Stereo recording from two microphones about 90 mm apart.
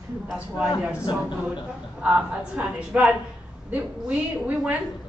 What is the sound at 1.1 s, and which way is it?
Speech, 55° left (ahead or behind).